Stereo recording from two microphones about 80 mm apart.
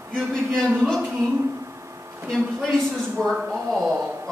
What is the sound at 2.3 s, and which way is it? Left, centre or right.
Speech, centre.